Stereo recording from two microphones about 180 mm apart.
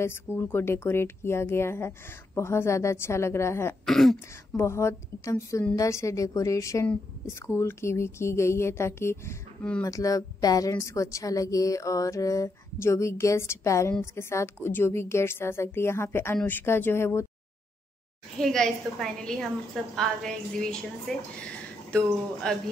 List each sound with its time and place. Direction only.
0.0 s a woman's voice: 15° left (ahead or behind)
3.8 s a woman's voice: centre (ahead or behind)
4.6 s a woman's voice: 15° left (ahead or behind)
9.8 s a woman's voice: 20° left (ahead or behind)
18.4 s a woman's voice: centre (ahead or behind)